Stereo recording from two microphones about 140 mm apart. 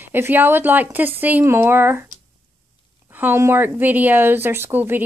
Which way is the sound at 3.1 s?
15° right (ahead or behind).